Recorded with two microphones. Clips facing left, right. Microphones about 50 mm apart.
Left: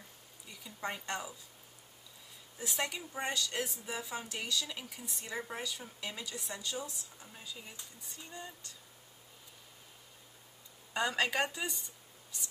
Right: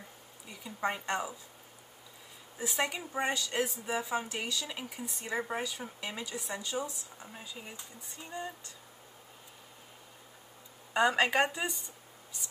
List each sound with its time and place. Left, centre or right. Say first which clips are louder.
0.5 s a woman's voice: right 6 dB; centre
2.5 s speech: right 4 dB; centre
10.9 s speech: right 6 dB; centre